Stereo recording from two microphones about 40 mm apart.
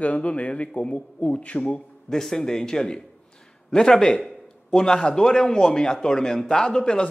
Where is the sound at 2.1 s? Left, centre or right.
Centre.